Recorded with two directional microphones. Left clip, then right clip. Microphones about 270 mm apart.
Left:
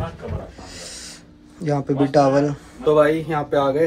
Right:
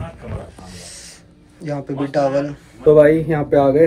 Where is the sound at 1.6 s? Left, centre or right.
Centre.